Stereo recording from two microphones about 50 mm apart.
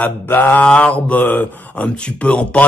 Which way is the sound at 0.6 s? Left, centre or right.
Left.